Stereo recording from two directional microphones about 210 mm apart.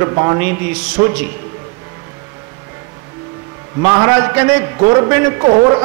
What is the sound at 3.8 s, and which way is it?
A man's voice, 15° right (ahead or behind).